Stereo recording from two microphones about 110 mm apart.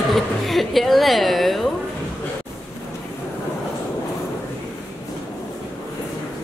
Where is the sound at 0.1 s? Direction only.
Centre (ahead or behind).